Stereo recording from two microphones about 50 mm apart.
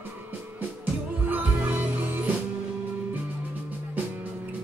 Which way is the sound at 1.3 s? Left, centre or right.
Right.